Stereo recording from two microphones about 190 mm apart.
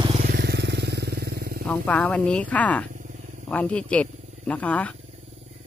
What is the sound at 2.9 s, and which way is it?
Wild animals, 45° right (ahead or behind).